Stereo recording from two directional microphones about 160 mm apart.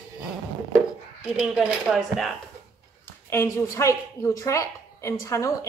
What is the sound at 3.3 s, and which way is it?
A woman's voice, 20° left (ahead or behind).